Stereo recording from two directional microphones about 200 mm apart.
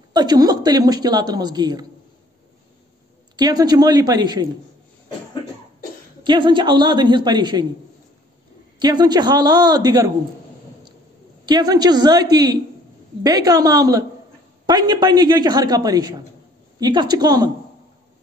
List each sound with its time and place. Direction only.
0.1 s a woman's voice: 20° right (ahead or behind)
3.3 s a woman's voice: 20° right (ahead or behind)
6.2 s a woman's voice: 25° right (ahead or behind)
8.7 s a woman's voice: 20° right (ahead or behind)
11.4 s a woman's voice: 20° right (ahead or behind)